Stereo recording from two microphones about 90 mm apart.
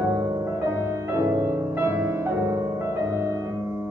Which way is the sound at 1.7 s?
25° right (ahead or behind).